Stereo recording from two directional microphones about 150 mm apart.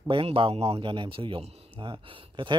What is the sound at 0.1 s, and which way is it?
Speech, 35° right (ahead or behind).